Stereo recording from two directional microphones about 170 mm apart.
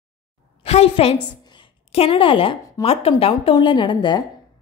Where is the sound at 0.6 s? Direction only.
35° left (ahead or behind).